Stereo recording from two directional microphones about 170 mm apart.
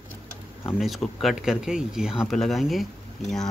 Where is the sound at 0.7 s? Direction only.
Centre (ahead or behind).